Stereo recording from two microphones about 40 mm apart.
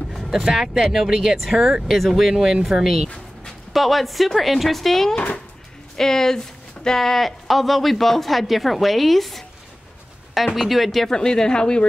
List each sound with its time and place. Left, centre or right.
0.1 s speech: centre
10.4 s speech: centre
11.1 s speech: centre